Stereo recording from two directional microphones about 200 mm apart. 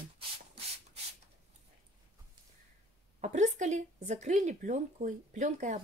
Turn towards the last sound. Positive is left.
turn(degrees=-35)  # may be behind; listen again after turning